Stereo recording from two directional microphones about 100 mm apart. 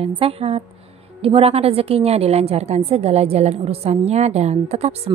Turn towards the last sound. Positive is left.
turn(degrees=-90)